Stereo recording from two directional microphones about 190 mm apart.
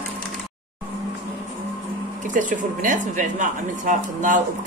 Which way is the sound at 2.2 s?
40° right (ahead or behind).